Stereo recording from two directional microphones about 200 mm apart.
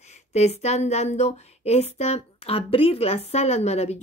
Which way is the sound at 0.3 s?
35° left (ahead or behind).